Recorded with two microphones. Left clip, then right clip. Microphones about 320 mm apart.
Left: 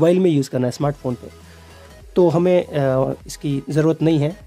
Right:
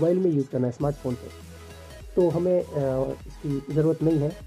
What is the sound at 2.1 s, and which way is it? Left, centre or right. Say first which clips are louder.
Speech: left 7 dB; left.